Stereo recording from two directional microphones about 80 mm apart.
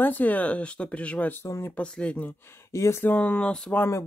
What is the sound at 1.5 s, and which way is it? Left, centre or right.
Speech, left.